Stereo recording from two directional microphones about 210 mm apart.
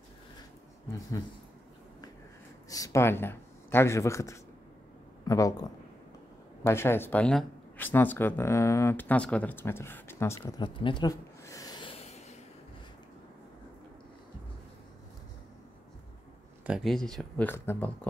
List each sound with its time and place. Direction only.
0.8 s speech: 15° left (ahead or behind)
2.7 s speech: 15° left (ahead or behind); by 12.4 s 30° left (ahead or behind)
16.6 s speech: centre (ahead or behind)